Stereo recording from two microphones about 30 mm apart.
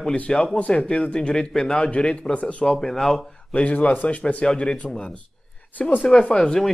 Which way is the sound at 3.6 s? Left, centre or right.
Left.